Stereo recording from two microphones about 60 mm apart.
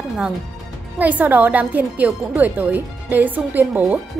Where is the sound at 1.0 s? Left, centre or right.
Right.